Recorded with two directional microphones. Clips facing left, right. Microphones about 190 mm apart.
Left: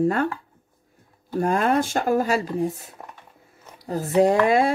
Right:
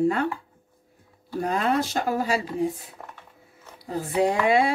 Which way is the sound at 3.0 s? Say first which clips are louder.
Left 1 dB; 10° left (ahead or behind).